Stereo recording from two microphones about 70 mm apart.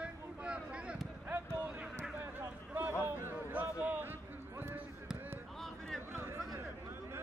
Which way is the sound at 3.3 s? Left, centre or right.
Right.